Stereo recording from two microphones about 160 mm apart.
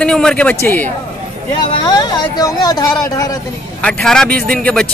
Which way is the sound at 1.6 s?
25° left (ahead or behind).